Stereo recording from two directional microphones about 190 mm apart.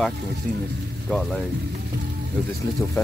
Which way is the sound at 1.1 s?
Centre (ahead or behind).